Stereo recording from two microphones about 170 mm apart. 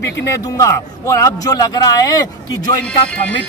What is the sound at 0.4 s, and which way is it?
Speech, 20° left (ahead or behind).